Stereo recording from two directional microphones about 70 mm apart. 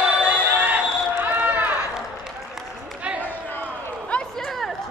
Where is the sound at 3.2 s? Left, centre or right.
Left.